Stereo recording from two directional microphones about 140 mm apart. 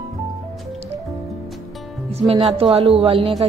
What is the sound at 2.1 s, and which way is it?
Speech, 50° right (ahead or behind).